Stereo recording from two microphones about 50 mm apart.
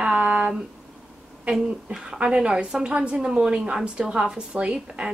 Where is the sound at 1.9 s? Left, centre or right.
Centre.